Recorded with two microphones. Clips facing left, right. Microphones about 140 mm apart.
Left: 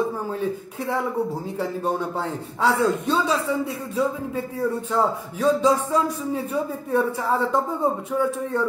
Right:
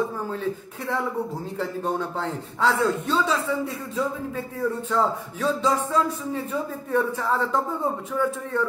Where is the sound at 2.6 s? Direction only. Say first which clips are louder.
Left 2 dB; 15° left (ahead or behind).